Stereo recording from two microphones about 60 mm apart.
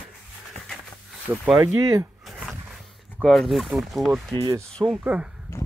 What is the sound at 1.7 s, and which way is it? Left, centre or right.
Speech, right.